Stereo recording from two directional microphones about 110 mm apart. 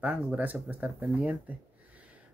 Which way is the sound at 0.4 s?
15° right (ahead or behind).